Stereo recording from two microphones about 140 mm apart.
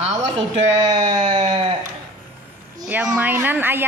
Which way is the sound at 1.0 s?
30° right (ahead or behind).